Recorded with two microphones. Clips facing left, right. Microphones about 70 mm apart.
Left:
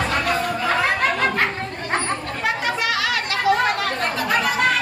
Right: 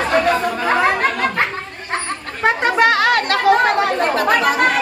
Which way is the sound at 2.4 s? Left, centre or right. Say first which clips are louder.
Right 9 dB; right.